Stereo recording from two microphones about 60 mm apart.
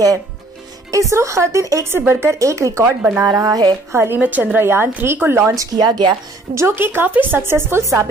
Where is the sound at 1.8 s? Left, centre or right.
Right.